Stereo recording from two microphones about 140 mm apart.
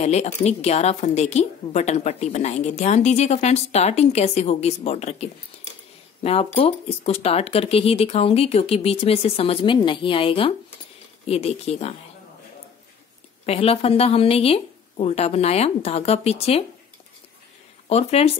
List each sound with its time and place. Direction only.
0.0 s a woman's voice: 50° left (ahead or behind)
6.2 s a woman's voice: 45° left (ahead or behind)
13.5 s a woman's voice: 45° left (ahead or behind)
17.8 s a woman's voice: 50° left (ahead or behind)